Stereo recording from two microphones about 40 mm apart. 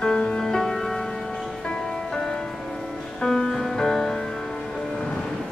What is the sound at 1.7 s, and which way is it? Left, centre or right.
Music, centre.